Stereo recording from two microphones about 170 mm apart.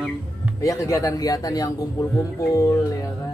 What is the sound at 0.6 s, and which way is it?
A man's voice, 20° left (ahead or behind).